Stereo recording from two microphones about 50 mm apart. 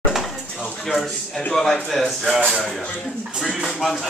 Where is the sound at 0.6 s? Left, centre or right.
Left.